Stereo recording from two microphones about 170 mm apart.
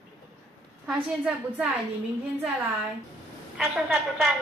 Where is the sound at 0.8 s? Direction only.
10° right (ahead or behind).